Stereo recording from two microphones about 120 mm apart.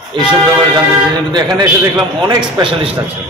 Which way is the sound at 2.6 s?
50° right (ahead or behind).